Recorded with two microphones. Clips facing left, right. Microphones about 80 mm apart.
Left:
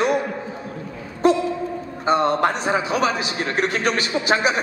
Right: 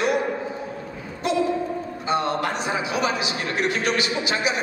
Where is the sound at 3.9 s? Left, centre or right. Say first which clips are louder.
Left 4 dB; left.